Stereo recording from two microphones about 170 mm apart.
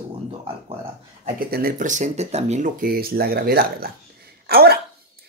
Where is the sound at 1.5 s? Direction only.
55° right (ahead or behind).